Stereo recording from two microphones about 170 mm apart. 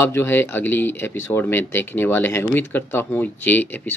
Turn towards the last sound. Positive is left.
turn(degrees=10)  # may be behind; listen again after turning